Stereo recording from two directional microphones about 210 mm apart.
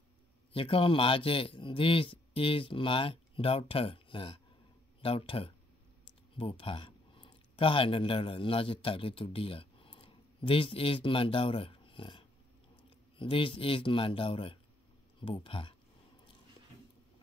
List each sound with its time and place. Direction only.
0.5 s a man's voice: 25° left (ahead or behind)